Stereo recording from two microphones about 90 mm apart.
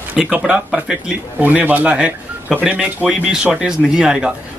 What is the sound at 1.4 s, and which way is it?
Speech, 20° right (ahead or behind).